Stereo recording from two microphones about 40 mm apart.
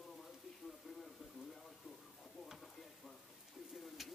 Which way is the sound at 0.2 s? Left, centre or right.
Centre.